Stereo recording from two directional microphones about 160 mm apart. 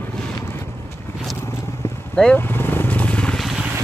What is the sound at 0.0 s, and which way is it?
Vehicle, 5° left (ahead or behind).